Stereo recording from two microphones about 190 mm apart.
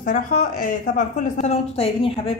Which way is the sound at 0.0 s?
45° left (ahead or behind).